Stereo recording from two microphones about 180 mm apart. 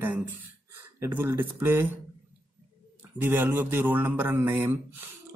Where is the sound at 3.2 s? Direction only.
10° right (ahead or behind).